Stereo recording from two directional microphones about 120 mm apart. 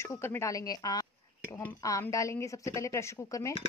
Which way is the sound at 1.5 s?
15° left (ahead or behind).